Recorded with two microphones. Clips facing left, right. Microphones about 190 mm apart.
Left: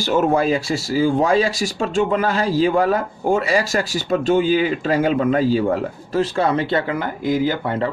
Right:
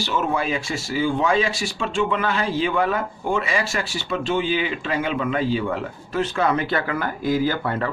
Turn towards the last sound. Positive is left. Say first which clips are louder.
# left 3 dB
turn(degrees=20)  # may be behind; listen again after turning